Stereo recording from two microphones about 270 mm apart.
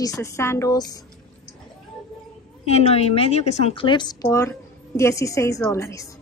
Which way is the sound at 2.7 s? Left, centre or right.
Left.